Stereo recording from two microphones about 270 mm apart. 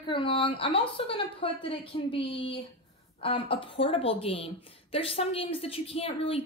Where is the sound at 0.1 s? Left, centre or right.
Centre.